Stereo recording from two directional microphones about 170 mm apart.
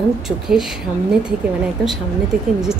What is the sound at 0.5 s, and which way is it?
Speech, 60° right (ahead or behind).